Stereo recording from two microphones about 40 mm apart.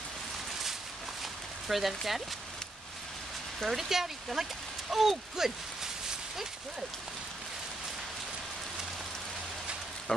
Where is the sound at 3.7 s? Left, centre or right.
Centre.